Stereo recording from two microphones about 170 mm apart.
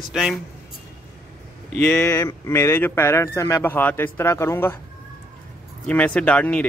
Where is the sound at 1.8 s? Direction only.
15° left (ahead or behind).